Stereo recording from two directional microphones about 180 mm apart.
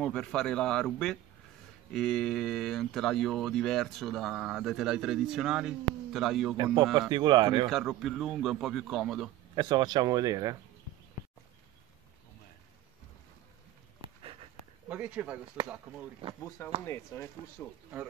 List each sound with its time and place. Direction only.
0.0 s speech: 5° left (ahead or behind)
6.5 s speech: 25° right (ahead or behind)
7.7 s speech: centre (ahead or behind)
9.6 s speech: 25° right (ahead or behind)
14.0 s a sound: 30° right (ahead or behind)
14.9 s speech: 10° right (ahead or behind)
16.4 s speech: 15° left (ahead or behind)